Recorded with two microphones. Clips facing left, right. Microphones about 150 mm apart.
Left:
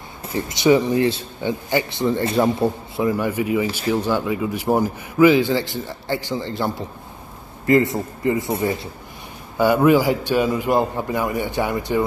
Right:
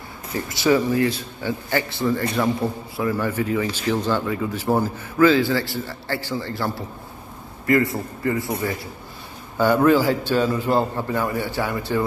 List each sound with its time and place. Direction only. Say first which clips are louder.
0.3 s speech: left 3 dB; 20° left (ahead or behind)
9.6 s a man's voice: left 1 dB; 10° left (ahead or behind)